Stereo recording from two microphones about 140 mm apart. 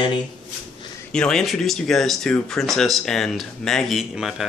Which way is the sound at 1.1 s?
5° left (ahead or behind).